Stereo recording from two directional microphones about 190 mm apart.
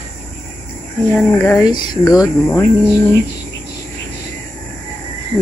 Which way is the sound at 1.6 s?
20° left (ahead or behind).